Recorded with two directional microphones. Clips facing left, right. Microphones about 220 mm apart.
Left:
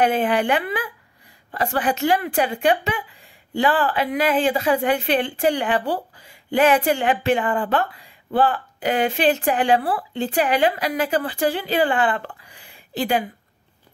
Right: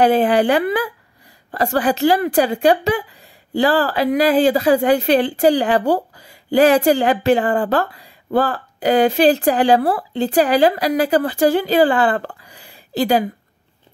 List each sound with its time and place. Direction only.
0.0 s a woman's voice: 35° right (ahead or behind)